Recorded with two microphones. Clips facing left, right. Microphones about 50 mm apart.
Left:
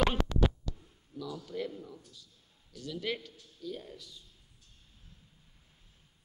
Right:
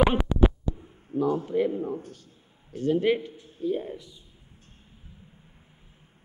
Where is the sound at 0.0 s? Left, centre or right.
Centre.